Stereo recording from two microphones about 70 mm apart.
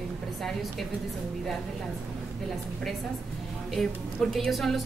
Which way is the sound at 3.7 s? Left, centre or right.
Centre.